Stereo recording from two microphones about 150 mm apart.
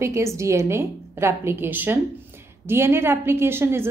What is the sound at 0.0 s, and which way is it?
A woman's voice, 20° right (ahead or behind).